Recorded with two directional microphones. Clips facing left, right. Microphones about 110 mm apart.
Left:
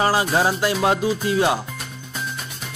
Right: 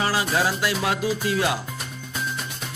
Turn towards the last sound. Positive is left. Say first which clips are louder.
# left 4 dB
turn(degrees=30)  # may be behind; listen again after turning